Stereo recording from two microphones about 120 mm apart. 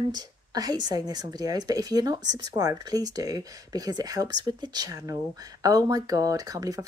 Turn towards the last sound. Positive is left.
turn(degrees=-30)  # may be behind; listen again after turning